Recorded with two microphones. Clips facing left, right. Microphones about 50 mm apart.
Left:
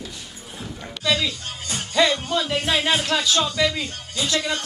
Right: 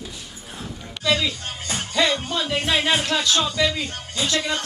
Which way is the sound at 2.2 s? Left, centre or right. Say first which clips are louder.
Left 1 dB; centre.